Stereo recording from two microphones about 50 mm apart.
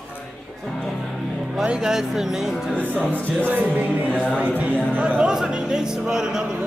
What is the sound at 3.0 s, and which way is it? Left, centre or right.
Speech, right.